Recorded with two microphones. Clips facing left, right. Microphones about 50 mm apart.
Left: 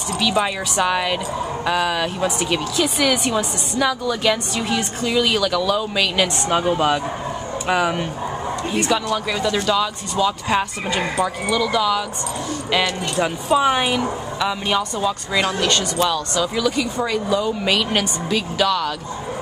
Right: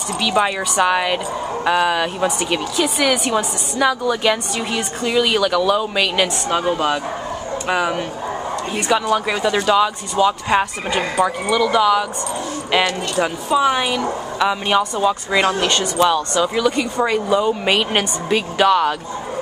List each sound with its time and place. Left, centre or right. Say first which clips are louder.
0.2 s speech: right 2 dB; centre
6.5 s speech: left 2 dB; centre
13.1 s speech: left 2 dB; centre
14.4 s speech: right 4 dB; centre